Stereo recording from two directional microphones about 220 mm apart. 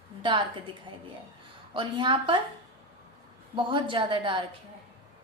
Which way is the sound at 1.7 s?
20° right (ahead or behind).